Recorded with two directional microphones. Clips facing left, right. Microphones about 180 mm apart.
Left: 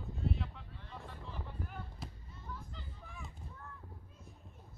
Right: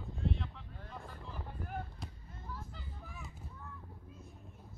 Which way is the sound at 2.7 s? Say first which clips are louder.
Right 1 dB; 5° right (ahead or behind).